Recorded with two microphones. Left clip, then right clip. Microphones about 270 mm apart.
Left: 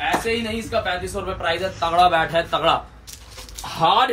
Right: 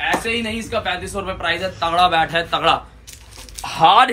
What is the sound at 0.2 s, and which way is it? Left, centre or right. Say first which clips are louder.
Speech: right 1 dB; centre.